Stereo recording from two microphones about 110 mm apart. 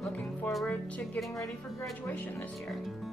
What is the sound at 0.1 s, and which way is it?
Music, 15° left (ahead or behind).